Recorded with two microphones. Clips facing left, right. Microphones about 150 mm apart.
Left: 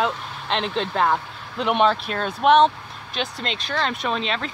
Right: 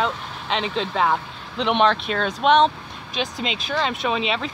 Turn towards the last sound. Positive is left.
turn(degrees=-5)  # may be behind; listen again after turning